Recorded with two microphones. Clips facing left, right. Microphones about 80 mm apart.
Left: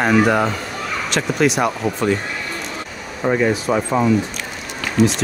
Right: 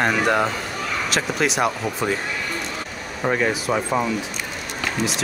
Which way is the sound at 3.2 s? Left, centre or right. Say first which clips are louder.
Left 4 dB; centre.